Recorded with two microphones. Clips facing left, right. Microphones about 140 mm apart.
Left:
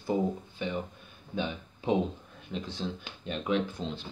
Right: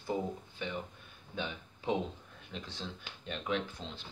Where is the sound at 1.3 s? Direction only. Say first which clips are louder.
Left 6 dB; 20° left (ahead or behind); by 3.9 s 5° left (ahead or behind).